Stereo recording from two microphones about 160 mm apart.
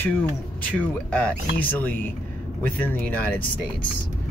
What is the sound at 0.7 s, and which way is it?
Speech, 10° left (ahead or behind).